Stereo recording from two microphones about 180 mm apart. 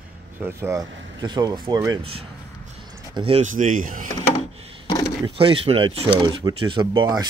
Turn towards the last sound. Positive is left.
turn(degrees=-20)  # may be behind; listen again after turning